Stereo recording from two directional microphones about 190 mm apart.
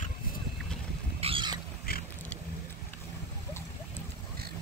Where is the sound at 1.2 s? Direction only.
25° right (ahead or behind).